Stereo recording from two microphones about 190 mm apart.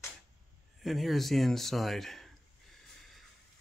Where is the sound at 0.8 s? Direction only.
Centre (ahead or behind).